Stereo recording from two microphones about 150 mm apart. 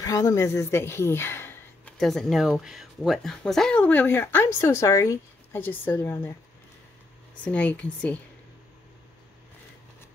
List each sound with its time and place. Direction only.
0.0 s speech: 20° left (ahead or behind)
2.0 s speech: centre (ahead or behind)
7.4 s speech: 10° left (ahead or behind)